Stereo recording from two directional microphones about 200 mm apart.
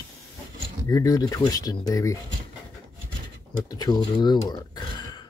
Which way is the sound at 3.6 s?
20° left (ahead or behind).